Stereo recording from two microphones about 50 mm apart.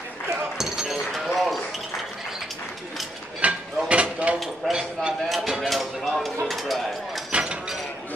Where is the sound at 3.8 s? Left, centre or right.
Right.